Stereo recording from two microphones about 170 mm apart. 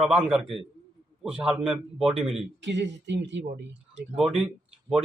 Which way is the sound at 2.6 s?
90° right.